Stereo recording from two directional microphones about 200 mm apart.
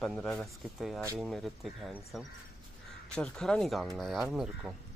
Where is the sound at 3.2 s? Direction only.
5° left (ahead or behind).